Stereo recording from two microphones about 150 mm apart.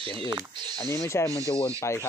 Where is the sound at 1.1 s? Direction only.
15° left (ahead or behind).